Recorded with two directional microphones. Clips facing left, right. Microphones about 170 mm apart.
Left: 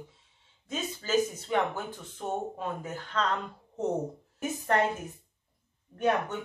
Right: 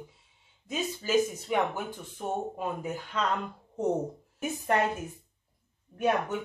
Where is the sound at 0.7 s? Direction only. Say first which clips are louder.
Right 2 dB; 10° right (ahead or behind).